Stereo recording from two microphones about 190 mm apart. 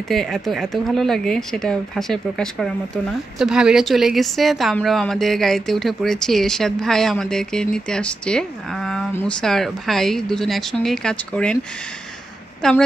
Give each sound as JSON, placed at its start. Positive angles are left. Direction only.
{"t": 0.1, "sound": "speech", "side_deg": 0}
{"t": 12.6, "sound": "speech", "side_deg": 5}